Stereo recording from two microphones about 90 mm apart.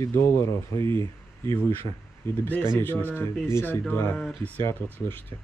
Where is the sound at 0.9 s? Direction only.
70° right (ahead or behind).